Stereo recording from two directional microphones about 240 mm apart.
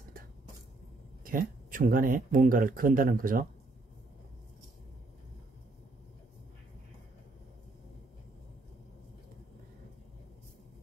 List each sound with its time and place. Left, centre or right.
1.2 s speech: right